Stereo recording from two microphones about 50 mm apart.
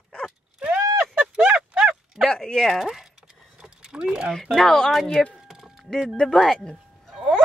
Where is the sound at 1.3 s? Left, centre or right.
Right.